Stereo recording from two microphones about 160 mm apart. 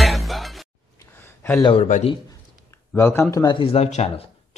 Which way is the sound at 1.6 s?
35° left (ahead or behind).